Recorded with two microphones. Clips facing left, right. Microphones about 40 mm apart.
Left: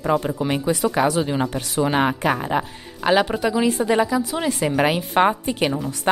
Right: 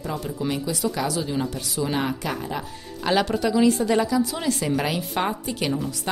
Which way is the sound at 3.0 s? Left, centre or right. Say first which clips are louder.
Left 3 dB; left.